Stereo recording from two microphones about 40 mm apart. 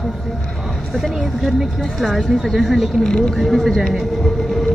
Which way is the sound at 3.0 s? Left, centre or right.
Centre.